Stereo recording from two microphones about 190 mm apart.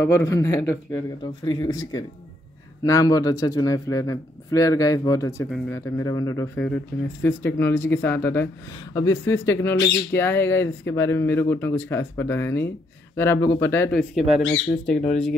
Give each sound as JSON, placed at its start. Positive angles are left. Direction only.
{"t": 0.0, "sound": "speech", "side_deg": 15}